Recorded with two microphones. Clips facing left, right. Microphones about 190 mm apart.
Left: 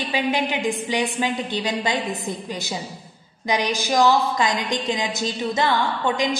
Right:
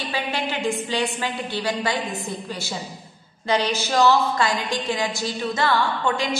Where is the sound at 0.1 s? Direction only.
15° left (ahead or behind).